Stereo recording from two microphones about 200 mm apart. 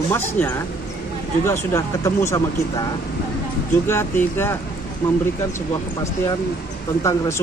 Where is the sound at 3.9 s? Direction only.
10° left (ahead or behind).